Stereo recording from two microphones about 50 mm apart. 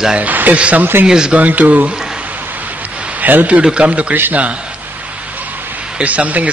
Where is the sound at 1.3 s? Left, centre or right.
Right.